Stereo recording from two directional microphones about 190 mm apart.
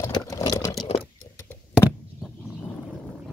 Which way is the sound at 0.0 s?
15° left (ahead or behind).